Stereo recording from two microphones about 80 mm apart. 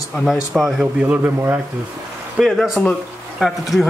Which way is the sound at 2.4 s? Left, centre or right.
Centre.